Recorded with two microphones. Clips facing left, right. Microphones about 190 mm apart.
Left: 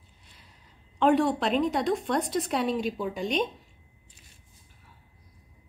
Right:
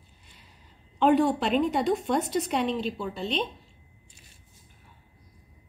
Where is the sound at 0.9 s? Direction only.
Centre (ahead or behind).